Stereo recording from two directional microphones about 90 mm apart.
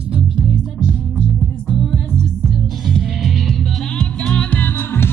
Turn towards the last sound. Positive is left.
turn(degrees=25)  # may be behind; listen again after turning